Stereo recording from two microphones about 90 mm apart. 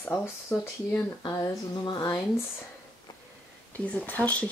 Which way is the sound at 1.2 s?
55° left (ahead or behind).